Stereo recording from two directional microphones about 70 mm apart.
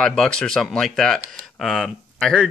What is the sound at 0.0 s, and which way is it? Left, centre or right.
Speech, centre.